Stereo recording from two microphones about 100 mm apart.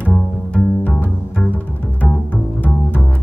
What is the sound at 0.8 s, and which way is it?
Bowed string instrument, 15° left (ahead or behind).